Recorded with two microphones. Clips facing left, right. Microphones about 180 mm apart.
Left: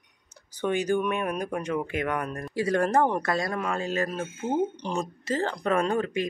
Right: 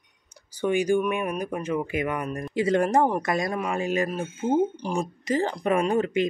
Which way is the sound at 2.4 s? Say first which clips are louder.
Right 4 dB; 20° right (ahead or behind).